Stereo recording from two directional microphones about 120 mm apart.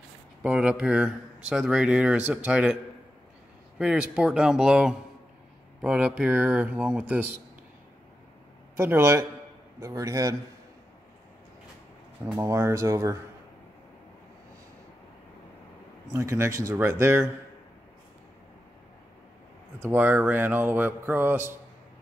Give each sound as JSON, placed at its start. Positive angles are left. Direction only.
{"t": 0.4, "sound": "speech", "side_deg": -10}
{"t": 8.7, "sound": "speech", "side_deg": -20}
{"t": 12.4, "sound": "speech", "side_deg": -25}
{"t": 16.2, "sound": "speech", "side_deg": -25}
{"t": 19.8, "sound": "speech", "side_deg": -15}